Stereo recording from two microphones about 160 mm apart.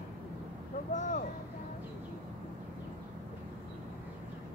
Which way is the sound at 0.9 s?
50° left (ahead or behind).